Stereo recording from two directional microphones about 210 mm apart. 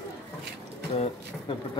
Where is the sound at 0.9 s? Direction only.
25° left (ahead or behind).